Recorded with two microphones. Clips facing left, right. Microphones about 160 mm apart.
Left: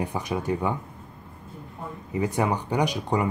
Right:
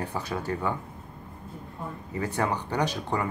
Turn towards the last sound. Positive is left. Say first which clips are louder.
# left 3 dB
turn(degrees=15)  # may be behind; listen again after turning